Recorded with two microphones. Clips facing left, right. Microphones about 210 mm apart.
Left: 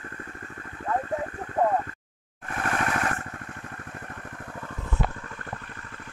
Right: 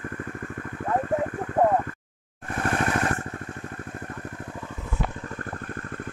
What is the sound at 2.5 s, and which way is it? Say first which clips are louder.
Vehicle: right 3 dB; 30° right (ahead or behind).